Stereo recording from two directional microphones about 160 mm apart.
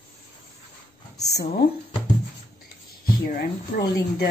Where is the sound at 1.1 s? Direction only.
90° left.